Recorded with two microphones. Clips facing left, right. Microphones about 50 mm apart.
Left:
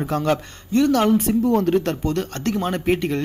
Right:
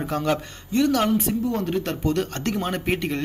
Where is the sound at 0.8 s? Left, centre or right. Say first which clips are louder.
Left 3 dB; left.